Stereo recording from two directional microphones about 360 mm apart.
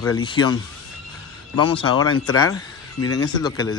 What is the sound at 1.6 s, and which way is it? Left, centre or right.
Speech, centre.